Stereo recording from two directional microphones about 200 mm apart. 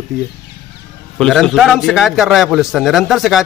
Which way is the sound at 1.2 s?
Centre (ahead or behind).